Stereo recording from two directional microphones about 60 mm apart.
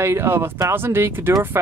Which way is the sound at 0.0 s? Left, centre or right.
Right.